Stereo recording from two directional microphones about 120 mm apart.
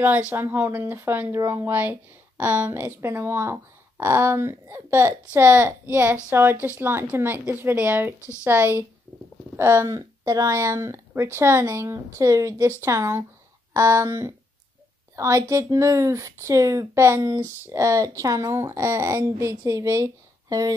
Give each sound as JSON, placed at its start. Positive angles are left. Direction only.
{"t": 0.3, "sound": "speech", "side_deg": -15}